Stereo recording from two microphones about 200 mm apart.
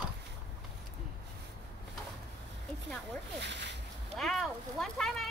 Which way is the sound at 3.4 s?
60° right (ahead or behind).